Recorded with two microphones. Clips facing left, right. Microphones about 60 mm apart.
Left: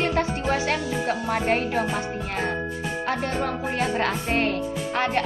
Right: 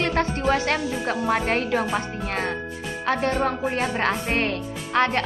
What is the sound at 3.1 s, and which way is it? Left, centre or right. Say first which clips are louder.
Speech: right 5 dB; right.